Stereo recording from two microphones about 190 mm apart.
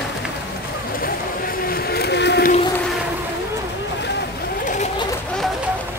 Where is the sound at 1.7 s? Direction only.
55° left (ahead or behind).